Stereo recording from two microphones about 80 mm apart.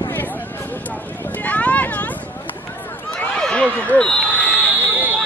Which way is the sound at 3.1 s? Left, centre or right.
Centre.